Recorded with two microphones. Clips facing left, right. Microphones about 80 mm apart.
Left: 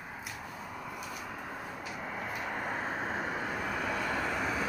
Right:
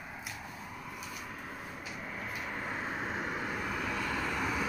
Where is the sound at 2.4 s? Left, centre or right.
Left.